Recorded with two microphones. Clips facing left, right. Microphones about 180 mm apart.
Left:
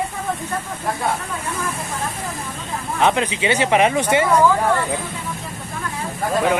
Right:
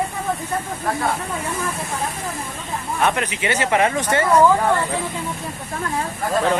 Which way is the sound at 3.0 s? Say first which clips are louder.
Left 3 dB; 20° left (ahead or behind).